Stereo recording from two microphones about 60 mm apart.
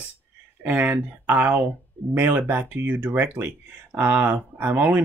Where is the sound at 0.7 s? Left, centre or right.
Right.